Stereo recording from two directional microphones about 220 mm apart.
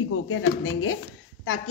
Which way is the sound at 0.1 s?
70° left (ahead or behind).